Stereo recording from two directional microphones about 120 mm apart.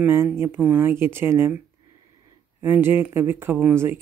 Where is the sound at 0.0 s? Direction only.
20° right (ahead or behind).